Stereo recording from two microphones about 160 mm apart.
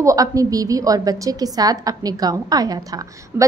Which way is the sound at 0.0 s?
20° right (ahead or behind).